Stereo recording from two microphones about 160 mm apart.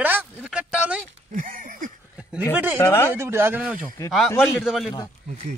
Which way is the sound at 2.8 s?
15° left (ahead or behind).